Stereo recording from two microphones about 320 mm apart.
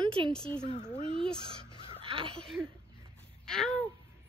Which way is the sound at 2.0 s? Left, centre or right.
Centre.